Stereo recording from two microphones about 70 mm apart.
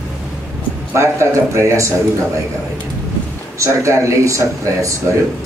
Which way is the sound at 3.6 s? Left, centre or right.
Right.